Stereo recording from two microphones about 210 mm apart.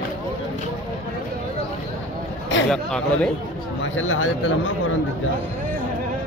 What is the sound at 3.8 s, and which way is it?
Speech, 70° left (ahead or behind).